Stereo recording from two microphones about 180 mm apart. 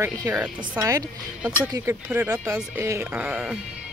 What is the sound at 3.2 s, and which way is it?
Speech, 5° right (ahead or behind).